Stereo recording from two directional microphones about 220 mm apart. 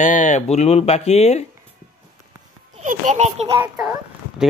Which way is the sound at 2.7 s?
35° right (ahead or behind).